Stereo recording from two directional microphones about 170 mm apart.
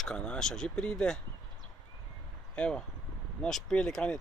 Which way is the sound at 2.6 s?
5° left (ahead or behind).